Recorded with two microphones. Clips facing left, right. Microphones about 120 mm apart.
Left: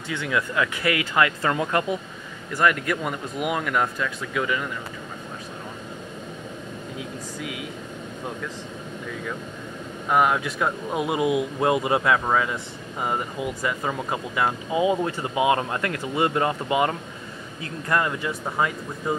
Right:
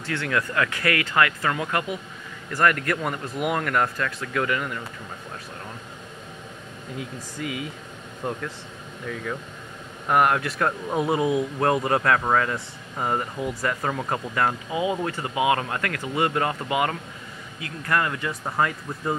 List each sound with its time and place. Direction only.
0.2 s speech: 15° left (ahead or behind)
2.6 s speech: 15° left (ahead or behind)
7.0 s speech: 5° left (ahead or behind)
10.0 s speech: centre (ahead or behind)
14.7 s speech: 25° left (ahead or behind)